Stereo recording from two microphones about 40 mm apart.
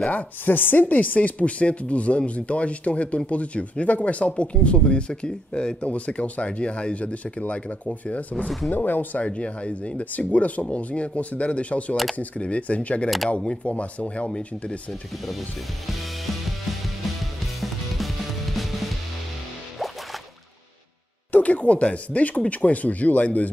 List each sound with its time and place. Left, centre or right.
0.1 s speech: left
8.6 s speech: left
9.2 s speech: left
10.1 s speech: left
17.6 s music: centre
21.3 s speech: left